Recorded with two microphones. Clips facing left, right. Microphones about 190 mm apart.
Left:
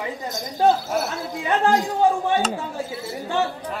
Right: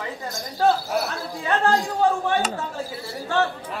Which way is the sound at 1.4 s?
20° left (ahead or behind).